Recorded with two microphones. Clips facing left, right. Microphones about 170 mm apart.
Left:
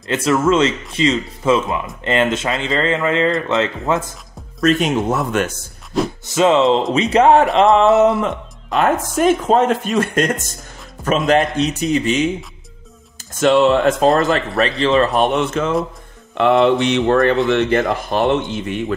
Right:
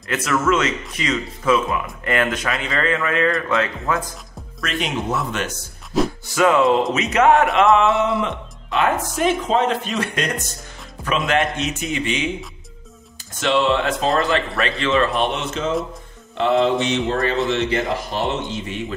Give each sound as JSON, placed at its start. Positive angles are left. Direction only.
{"t": 0.0, "sound": "speech", "side_deg": 25}
{"t": 4.6, "sound": "speech", "side_deg": 45}
{"t": 6.2, "sound": "speech", "side_deg": 20}
{"t": 8.6, "sound": "speech", "side_deg": 45}
{"t": 11.0, "sound": "music", "side_deg": 0}
{"t": 11.5, "sound": "speech", "side_deg": 35}
{"t": 16.3, "sound": "speech", "side_deg": 65}